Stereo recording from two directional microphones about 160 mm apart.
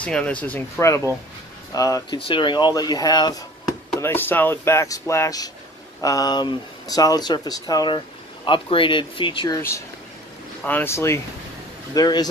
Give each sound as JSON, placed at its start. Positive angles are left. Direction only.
{"t": 0.0, "sound": "speech", "side_deg": 5}
{"t": 4.0, "sound": "speech", "side_deg": 15}
{"t": 10.6, "sound": "speech", "side_deg": 10}